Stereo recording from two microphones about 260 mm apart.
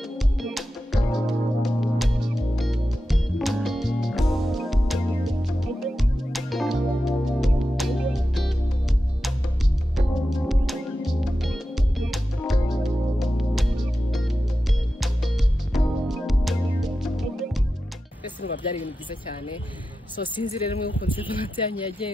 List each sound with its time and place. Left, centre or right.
0.4 s music: centre
9.9 s music: centre
20.3 s speech: centre